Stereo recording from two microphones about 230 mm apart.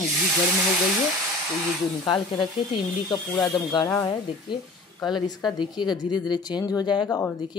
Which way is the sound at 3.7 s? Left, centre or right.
Centre.